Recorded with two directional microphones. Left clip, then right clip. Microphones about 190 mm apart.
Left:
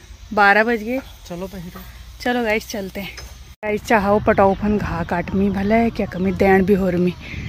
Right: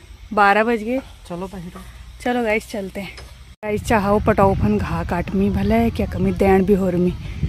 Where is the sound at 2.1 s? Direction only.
Centre (ahead or behind).